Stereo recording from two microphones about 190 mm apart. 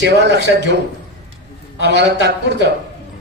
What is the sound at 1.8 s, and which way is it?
Speech, 65° right (ahead or behind).